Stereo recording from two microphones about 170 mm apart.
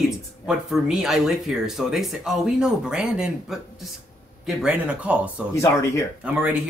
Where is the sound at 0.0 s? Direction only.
Centre (ahead or behind).